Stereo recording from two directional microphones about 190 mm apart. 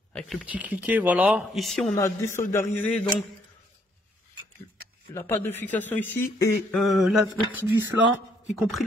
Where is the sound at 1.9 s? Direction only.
15° left (ahead or behind).